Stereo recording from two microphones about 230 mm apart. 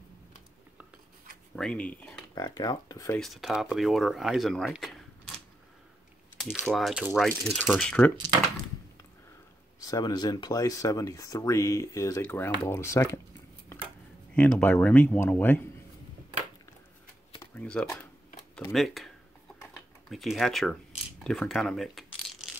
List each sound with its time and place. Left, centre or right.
1.5 s speech: centre
2.3 s speech: centre
3.2 s speech: centre
6.3 s speech: centre
9.8 s speech: centre
14.3 s speech: centre
17.6 s speech: centre
20.1 s speech: centre
21.2 s a sound: centre